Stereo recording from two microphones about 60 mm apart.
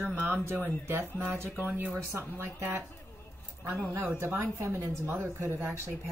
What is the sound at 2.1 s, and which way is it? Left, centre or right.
Speech, right.